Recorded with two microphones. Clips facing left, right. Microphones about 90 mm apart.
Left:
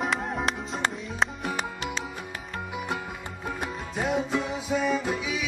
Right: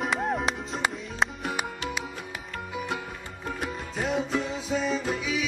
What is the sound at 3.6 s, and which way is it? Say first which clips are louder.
Music: left 1 dB; 15° left (ahead or behind).